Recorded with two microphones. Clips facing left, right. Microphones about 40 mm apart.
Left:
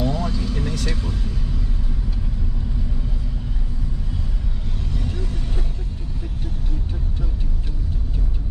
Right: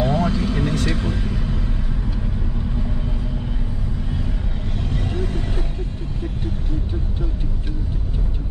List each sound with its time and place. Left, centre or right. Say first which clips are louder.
0.0 s vehicle: right 4 dB; right
4.9 s vehicle: right 5 dB; right